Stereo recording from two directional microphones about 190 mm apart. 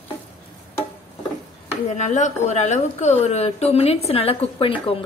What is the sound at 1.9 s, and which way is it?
A woman's voice, 40° left (ahead or behind).